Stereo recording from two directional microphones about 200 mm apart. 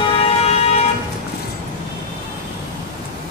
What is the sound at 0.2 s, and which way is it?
Vehicle, 30° left (ahead or behind).